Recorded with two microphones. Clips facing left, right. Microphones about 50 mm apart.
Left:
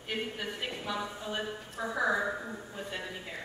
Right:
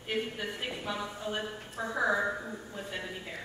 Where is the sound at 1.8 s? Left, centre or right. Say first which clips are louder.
Right 1 dB; centre.